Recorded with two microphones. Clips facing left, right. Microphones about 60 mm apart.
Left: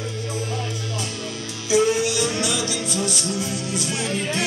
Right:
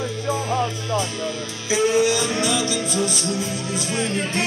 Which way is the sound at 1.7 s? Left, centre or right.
Right.